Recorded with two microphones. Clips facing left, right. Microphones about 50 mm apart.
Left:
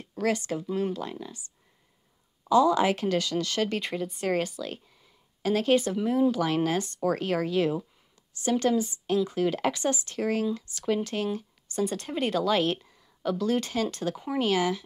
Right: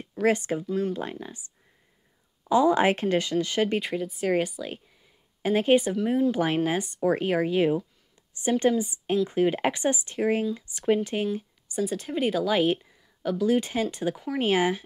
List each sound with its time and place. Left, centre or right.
0.0 s speech: right
0.7 s speech: centre
1.2 s speech: right
2.5 s speech: right
3.8 s speech: centre
4.4 s speech: centre
11.3 s a sound: centre
11.8 s speech: centre
14.4 s speech: right